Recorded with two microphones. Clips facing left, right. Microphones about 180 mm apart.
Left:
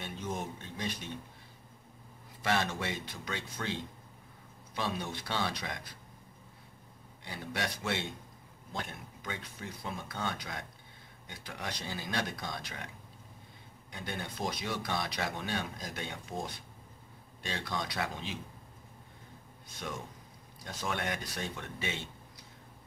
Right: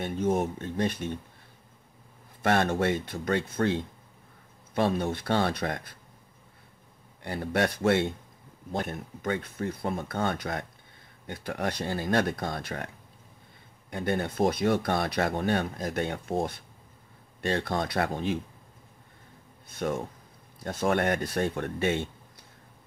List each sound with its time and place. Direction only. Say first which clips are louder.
0.0 s speech: right 11 dB; 55° right (ahead or behind)
2.4 s speech: right 8 dB; 55° right (ahead or behind)
7.2 s speech: right 10 dB; 55° right (ahead or behind)
19.7 s speech: right 11 dB; 50° right (ahead or behind)